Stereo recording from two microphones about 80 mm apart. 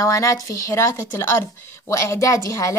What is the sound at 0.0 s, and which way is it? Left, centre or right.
A woman's voice, left.